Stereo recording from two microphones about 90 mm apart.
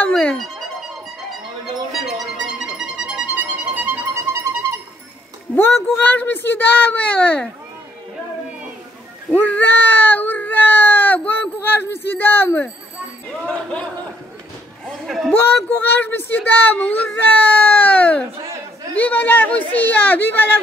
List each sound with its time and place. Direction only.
0.0 s music: 15° left (ahead or behind)
1.9 s music: 5° right (ahead or behind)
4.1 s music: 35° right (ahead or behind)
5.5 s speech: 25° left (ahead or behind)
9.3 s a sound: 20° left (ahead or behind)
13.3 s speech: 10° left (ahead or behind)
14.9 s speech: centre (ahead or behind)
15.4 s speech: 20° left (ahead or behind)